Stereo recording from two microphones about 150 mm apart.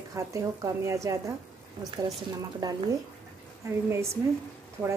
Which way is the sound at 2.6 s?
25° right (ahead or behind).